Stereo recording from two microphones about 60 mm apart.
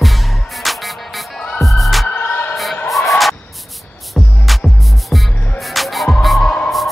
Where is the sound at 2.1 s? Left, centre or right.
Left.